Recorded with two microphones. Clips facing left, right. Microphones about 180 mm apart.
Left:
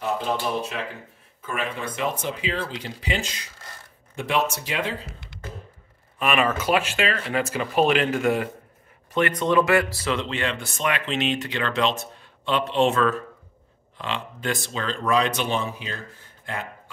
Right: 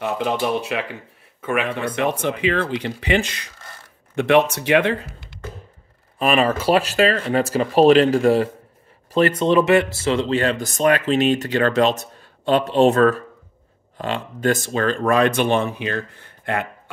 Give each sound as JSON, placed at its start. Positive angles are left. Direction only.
{"t": 0.0, "sound": "speech", "side_deg": -70}
{"t": 6.1, "sound": "speech", "side_deg": -35}